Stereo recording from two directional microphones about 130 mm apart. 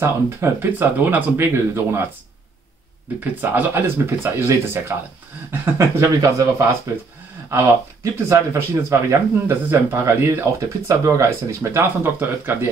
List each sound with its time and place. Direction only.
0.0 s speech: 20° right (ahead or behind)
3.3 s speech: 15° right (ahead or behind)